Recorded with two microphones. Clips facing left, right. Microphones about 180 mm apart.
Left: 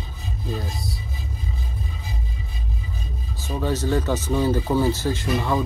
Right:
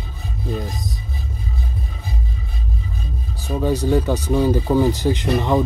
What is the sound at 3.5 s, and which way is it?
Speech, 10° right (ahead or behind).